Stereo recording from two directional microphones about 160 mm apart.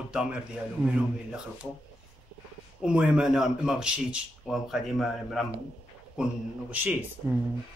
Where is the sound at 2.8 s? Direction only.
5° right (ahead or behind).